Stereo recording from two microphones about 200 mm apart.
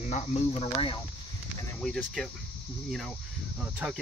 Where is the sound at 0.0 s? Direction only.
35° left (ahead or behind).